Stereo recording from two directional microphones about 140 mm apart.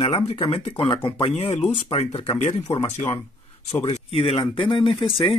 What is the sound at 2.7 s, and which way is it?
Speech, 45° left (ahead or behind).